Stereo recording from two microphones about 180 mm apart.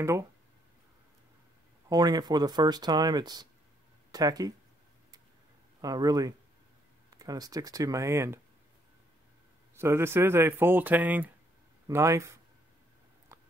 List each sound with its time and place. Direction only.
1.9 s speech: 20° right (ahead or behind)
5.8 s speech: 20° right (ahead or behind)
9.8 s speech: 15° right (ahead or behind)
13.3 s chewing: 15° right (ahead or behind)